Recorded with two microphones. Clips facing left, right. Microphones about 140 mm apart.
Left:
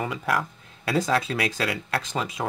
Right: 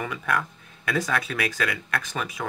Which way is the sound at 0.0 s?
25° left (ahead or behind).